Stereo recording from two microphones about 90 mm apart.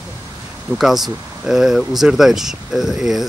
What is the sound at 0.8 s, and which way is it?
Speech, centre (ahead or behind).